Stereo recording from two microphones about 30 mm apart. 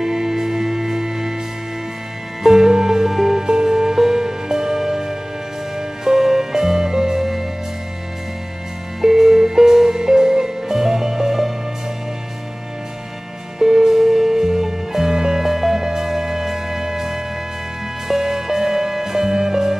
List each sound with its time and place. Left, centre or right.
0.0 s music: centre
2.4 s music: centre
3.4 s music: right
9.0 s music: centre
13.6 s music: centre
15.4 s music: centre